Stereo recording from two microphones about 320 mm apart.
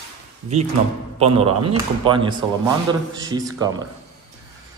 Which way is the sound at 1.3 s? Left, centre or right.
Centre.